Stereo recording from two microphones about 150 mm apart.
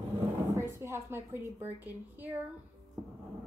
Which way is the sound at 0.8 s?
15° right (ahead or behind).